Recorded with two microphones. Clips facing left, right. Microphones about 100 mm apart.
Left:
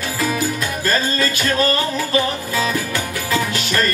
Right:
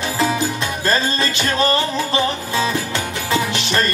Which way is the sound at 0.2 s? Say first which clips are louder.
Right 1 dB; 25° right (ahead or behind).